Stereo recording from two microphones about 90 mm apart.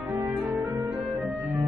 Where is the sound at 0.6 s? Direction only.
25° right (ahead or behind).